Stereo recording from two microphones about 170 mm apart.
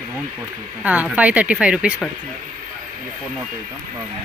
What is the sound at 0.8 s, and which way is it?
Speech, 10° right (ahead or behind).